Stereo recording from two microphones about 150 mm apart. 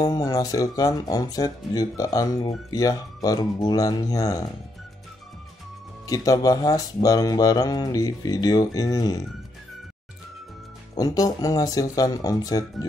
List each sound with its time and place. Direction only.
0.0 s speech: 25° left (ahead or behind)
6.0 s speech: 25° left (ahead or behind)
11.0 s speech: 25° left (ahead or behind)